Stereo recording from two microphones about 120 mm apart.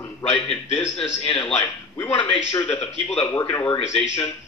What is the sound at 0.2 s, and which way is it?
A man's voice, 55° left (ahead or behind).